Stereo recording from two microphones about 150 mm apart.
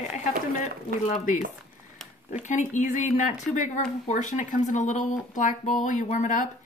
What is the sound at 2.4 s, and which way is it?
Speech, 55° left (ahead or behind).